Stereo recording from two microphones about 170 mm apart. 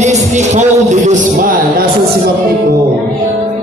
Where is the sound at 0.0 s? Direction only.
45° right (ahead or behind).